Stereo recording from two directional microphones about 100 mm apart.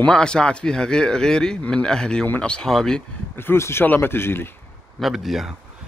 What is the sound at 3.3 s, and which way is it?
Speech, 25° left (ahead or behind).